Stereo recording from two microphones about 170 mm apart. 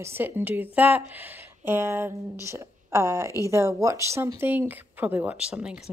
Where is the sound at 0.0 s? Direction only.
10° right (ahead or behind).